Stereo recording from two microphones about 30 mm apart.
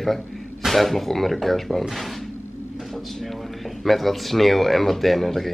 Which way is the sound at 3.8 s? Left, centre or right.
Centre.